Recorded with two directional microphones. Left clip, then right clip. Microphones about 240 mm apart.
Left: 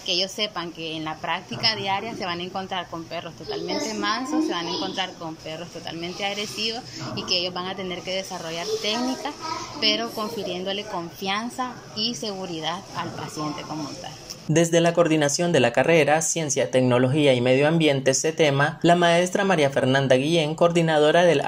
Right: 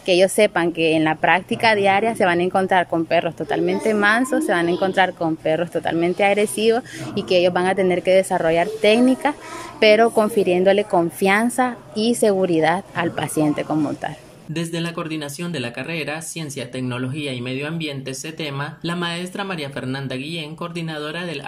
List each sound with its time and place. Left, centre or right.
0.1 s a woman's voice: right
14.5 s speech: centre